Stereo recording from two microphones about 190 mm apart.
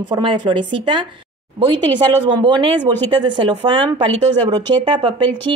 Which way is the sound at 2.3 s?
25° right (ahead or behind).